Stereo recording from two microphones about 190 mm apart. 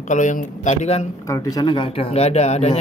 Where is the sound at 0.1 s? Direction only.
40° left (ahead or behind).